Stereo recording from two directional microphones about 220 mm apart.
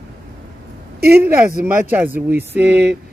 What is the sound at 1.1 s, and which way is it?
A man's voice, 10° right (ahead or behind).